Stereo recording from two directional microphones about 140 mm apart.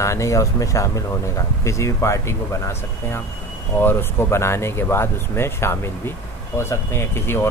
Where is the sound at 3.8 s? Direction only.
15° left (ahead or behind).